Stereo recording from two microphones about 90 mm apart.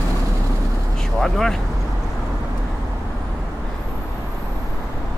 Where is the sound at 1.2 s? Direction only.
5° left (ahead or behind).